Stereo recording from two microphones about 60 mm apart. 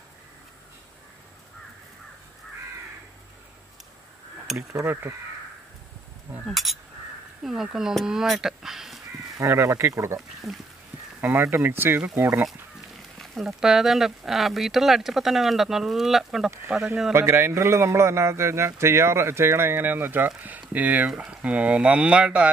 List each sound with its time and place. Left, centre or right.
6.4 s speech: centre
9.4 s speech: right
11.1 s speech: right
13.2 s speech: centre
16.7 s speech: centre
17.1 s speech: right; by 22.5 s centre